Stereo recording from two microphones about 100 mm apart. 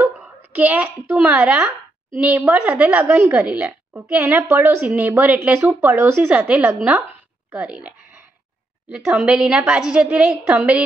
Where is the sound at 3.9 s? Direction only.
20° right (ahead or behind).